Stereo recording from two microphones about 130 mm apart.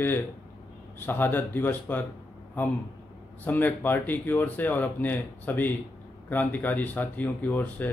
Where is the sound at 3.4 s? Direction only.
15° left (ahead or behind).